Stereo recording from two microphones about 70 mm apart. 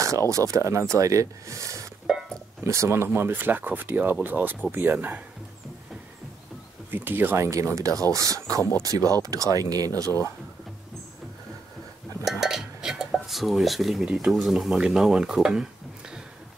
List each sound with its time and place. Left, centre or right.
0.5 s speech: right
2.1 s a sound: centre
2.6 s speech: right
3.1 s speech: right
6.9 s speech: right
7.4 s speech: right
12.3 s dishes: centre